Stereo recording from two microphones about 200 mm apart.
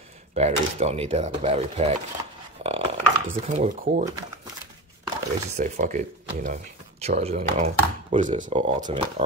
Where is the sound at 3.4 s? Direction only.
35° right (ahead or behind).